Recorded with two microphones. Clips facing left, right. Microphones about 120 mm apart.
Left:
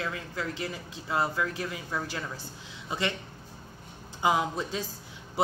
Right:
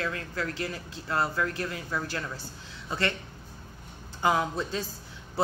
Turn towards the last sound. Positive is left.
turn(degrees=10)  # may be behind; listen again after turning